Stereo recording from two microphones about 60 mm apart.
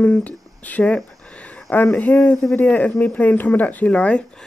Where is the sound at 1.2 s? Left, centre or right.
Centre.